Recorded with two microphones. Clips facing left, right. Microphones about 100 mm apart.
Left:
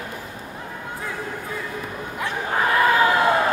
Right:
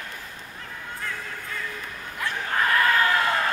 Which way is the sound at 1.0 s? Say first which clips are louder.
Left 4 dB; 15° left (ahead or behind).